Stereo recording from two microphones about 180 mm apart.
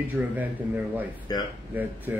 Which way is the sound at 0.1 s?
10° right (ahead or behind).